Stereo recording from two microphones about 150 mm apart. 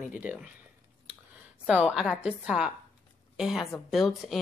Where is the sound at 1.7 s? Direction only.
5° right (ahead or behind).